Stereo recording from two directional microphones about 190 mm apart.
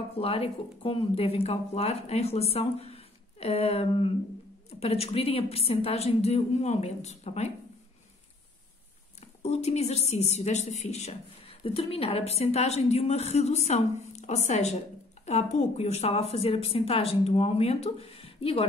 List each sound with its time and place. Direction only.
0.1 s a woman's voice: 30° left (ahead or behind)
9.2 s a woman's voice: 35° left (ahead or behind)